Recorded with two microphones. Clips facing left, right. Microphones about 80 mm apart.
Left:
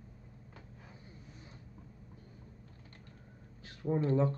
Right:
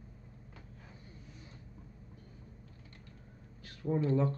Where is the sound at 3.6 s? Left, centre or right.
Left.